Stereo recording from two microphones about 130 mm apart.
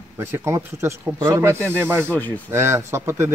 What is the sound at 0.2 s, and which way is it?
Speech, 20° right (ahead or behind).